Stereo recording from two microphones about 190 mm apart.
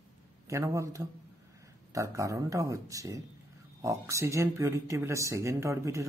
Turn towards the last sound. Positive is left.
turn(degrees=-15)  # may be behind; listen again after turning